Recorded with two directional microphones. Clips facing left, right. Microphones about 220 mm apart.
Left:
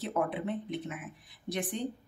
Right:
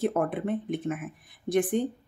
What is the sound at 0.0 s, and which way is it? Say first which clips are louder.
A woman's voice: right 5 dB; 50° right (ahead or behind).